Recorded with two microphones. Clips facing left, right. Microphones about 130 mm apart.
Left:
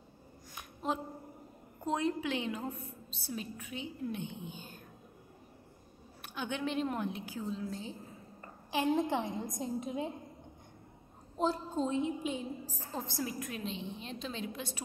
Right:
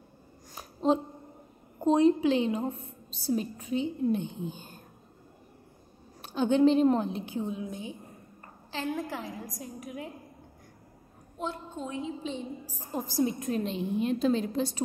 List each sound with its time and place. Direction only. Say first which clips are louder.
0.6 s a sound: right 10 dB; 25° right (ahead or behind)
1.8 s a woman's voice: right 11 dB; 25° right (ahead or behind)
4.5 s a woman's voice: right 5 dB; 40° right (ahead or behind)
6.2 s a woman's voice: right 14 dB; 30° right (ahead or behind)
8.7 s a woman's voice: left 3 dB; 20° left (ahead or behind)
11.3 s a woman's voice: left 4 dB; 35° left (ahead or behind)
12.1 s a woman's voice: right 1 dB; 10° left (ahead or behind)
12.6 s a woman's voice: right 5 dB; 15° right (ahead or behind)
13.2 s a woman's voice: right 12 dB; 25° right (ahead or behind)
13.6 s a woman's voice: right 11 dB; 45° right (ahead or behind)